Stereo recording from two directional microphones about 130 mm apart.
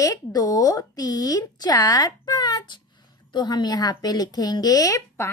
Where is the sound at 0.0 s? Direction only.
30° left (ahead or behind).